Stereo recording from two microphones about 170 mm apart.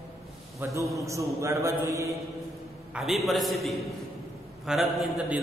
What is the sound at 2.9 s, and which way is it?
Speech, centre (ahead or behind).